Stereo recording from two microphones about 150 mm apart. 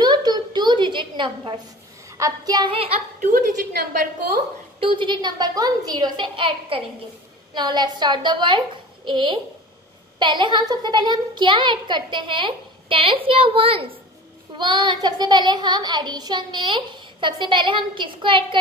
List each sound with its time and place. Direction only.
0.0 s a sound: 25° right (ahead or behind)
2.0 s child singing: 20° right (ahead or behind)
3.2 s a woman's voice: 70° right (ahead or behind)
4.7 s child singing: 35° right (ahead or behind)